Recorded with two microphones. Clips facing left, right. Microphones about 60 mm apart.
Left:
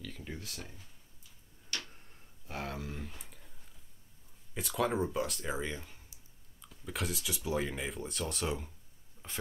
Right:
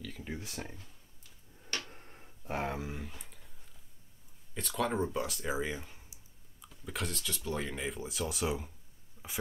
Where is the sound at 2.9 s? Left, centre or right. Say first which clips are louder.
Right 1 dB; centre.